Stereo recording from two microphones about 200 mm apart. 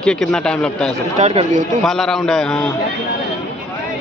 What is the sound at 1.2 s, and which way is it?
Speech, 30° right (ahead or behind).